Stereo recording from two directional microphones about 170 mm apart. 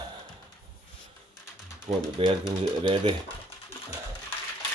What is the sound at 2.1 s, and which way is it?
Speech, 25° right (ahead or behind).